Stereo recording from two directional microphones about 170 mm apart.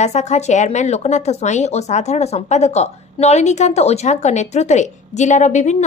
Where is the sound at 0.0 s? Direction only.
40° left (ahead or behind).